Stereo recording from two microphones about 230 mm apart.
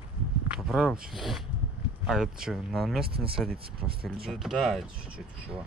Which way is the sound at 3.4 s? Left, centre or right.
Right.